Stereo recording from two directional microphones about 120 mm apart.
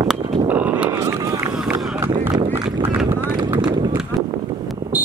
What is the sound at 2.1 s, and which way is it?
Run, 35° right (ahead or behind).